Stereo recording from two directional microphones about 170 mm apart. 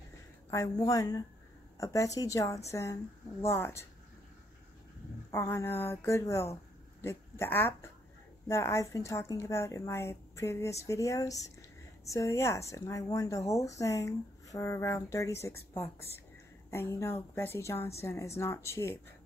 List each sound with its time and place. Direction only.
0.5 s a woman's voice: 20° left (ahead or behind)
5.3 s a woman's voice: 15° left (ahead or behind)